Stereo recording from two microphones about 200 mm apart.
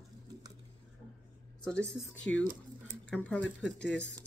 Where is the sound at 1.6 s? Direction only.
5° left (ahead or behind).